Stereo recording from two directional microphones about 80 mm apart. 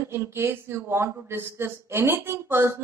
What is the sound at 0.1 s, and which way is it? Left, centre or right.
Speech, right.